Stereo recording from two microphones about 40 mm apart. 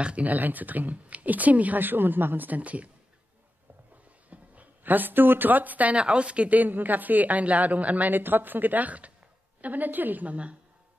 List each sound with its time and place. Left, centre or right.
0.2 s speech: right
4.3 s speech: right
5.9 s speech: right
6.5 s speech: right
8.1 s speech: right
10.3 s speech: right